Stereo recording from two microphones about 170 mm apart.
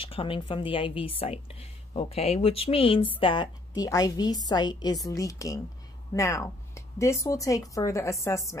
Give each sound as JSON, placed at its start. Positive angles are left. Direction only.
{"t": 0.0, "sound": "a woman's voice", "side_deg": 30}